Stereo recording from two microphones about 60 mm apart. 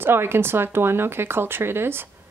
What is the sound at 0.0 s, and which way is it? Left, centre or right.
Speech, right.